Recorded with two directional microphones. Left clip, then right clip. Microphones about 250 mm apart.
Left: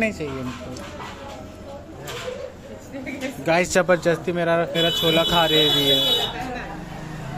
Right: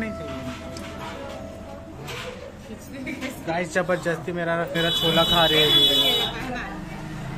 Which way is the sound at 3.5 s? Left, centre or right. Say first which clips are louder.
Left 6 dB; left.